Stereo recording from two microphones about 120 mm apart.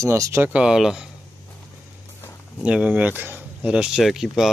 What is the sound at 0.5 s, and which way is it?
Speech, 5° right (ahead or behind).